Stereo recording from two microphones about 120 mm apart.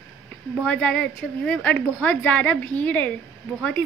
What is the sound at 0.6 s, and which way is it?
A woman's voice, 10° left (ahead or behind).